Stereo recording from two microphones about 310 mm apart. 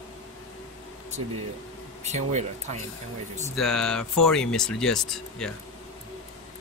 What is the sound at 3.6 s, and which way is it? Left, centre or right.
Speech, centre.